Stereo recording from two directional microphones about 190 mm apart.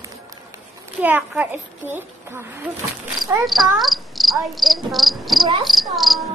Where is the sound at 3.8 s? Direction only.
Centre (ahead or behind).